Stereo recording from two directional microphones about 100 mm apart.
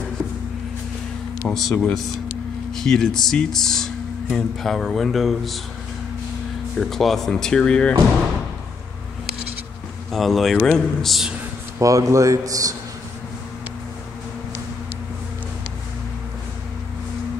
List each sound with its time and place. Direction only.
1.5 s speech: 5° left (ahead or behind)
6.8 s speech: centre (ahead or behind)
10.1 s speech: centre (ahead or behind)
11.8 s a man's voice: 35° right (ahead or behind)